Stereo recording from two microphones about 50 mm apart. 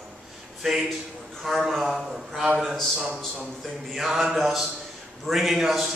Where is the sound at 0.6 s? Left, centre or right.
Centre.